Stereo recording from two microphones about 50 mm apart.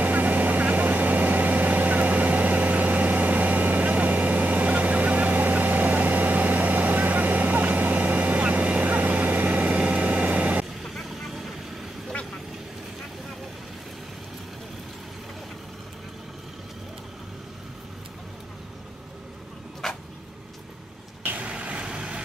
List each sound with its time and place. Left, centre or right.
0.0 s vehicle: right
10.8 s vehicle: centre
19.8 s a sound: centre
21.4 s vehicle: right